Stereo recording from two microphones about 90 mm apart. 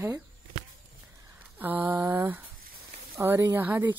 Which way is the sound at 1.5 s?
20° right (ahead or behind).